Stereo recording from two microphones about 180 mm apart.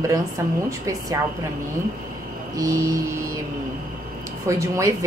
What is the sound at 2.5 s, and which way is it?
Speech, 20° right (ahead or behind).